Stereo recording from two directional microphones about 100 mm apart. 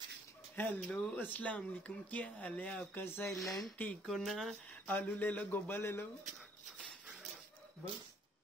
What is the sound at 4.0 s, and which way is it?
Speech, centre (ahead or behind).